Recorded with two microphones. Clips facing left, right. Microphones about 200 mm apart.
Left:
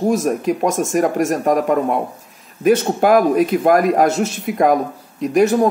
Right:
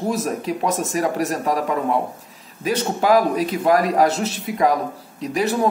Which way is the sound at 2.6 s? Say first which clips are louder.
Left 5 dB; 55° left (ahead or behind).